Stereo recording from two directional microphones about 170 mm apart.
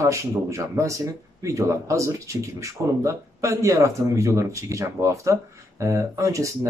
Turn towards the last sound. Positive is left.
turn(degrees=-20)  # may be behind; listen again after turning